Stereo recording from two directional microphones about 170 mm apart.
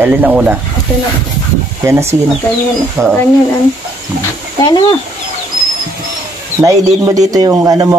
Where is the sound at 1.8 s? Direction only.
15° right (ahead or behind).